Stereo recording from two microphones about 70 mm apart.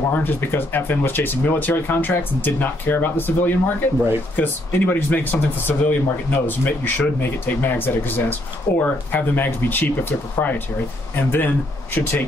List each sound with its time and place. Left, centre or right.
0.1 s speech: left